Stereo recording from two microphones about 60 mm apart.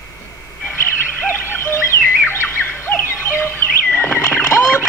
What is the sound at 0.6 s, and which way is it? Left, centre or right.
Bird, left.